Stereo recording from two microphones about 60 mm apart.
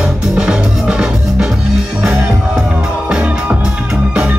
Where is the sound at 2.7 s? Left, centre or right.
Centre.